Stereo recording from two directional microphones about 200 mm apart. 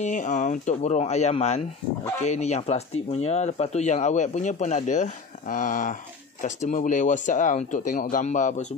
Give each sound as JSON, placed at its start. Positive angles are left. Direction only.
{"t": 0.0, "sound": "speech", "side_deg": 40}